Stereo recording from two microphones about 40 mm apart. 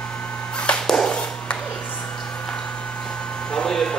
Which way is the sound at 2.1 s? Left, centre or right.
Left.